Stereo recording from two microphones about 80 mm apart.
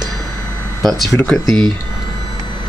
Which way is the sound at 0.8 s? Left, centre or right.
Centre.